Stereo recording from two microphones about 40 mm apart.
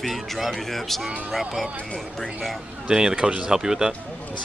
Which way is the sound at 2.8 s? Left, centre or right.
Centre.